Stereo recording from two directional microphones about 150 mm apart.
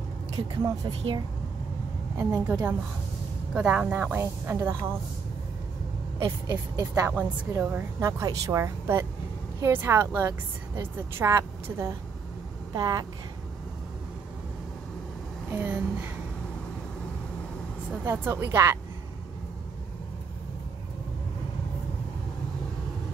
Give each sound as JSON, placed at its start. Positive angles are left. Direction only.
{"t": 0.4, "sound": "a woman's voice", "side_deg": -30}
{"t": 2.1, "sound": "speech", "side_deg": -15}
{"t": 6.1, "sound": "a woman's voice", "side_deg": -20}
{"t": 15.5, "sound": "speech", "side_deg": -15}
{"t": 18.0, "sound": "speech", "side_deg": -15}